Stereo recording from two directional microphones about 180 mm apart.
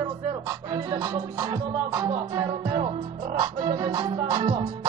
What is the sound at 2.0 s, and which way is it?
Music, 30° right (ahead or behind).